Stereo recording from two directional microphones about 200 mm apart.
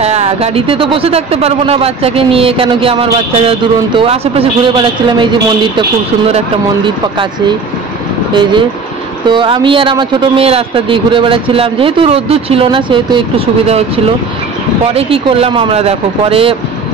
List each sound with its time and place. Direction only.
0.0 s speech: 30° right (ahead or behind)
8.3 s speech: 25° right (ahead or behind)
15.0 s speech: 30° right (ahead or behind)